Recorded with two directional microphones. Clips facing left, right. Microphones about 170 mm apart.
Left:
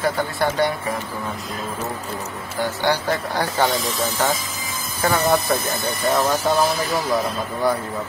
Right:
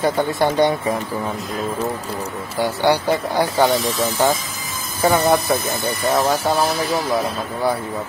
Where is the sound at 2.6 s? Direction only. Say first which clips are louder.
Right 4 dB; 10° right (ahead or behind).